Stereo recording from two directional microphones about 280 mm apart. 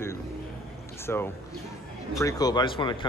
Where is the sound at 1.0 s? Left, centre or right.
Centre.